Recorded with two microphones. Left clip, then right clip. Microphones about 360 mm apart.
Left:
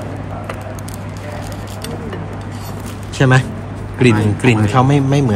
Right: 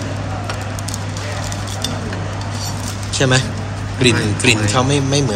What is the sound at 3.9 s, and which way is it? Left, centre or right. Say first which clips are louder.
A man's voice: left 1 dB; left.